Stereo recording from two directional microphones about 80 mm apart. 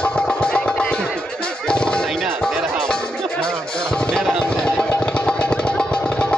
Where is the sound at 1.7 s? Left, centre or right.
Centre.